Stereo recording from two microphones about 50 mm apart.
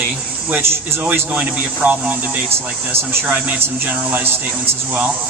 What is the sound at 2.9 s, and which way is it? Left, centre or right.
Speech, right.